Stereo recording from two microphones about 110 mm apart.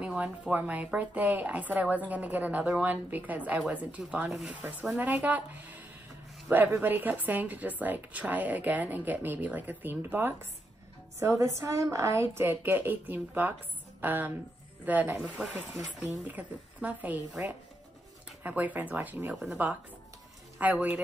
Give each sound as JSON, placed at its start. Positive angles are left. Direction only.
{"t": 0.0, "sound": "a woman's voice", "side_deg": -10}